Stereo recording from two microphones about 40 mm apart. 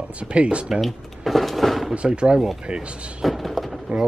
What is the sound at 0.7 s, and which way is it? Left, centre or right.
Speech, centre.